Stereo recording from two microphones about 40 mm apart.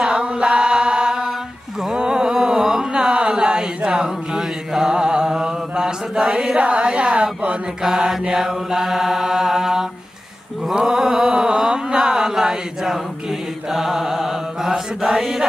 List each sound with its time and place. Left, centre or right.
0.0 s chant: right
2.0 s a sound: centre
7.8 s mantra: centre
11.9 s chant: centre
13.7 s mantra: centre